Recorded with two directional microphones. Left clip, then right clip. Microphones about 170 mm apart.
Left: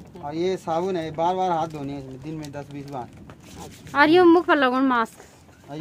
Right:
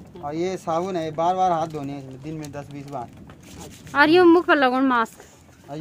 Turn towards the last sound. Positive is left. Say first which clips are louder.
# right 1 dB
turn(degrees=-30)  # may be behind; listen again after turning